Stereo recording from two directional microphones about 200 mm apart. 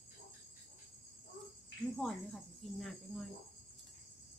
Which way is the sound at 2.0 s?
5° left (ahead or behind).